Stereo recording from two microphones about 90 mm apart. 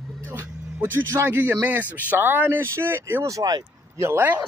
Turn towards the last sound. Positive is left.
turn(degrees=-25)  # may be behind; listen again after turning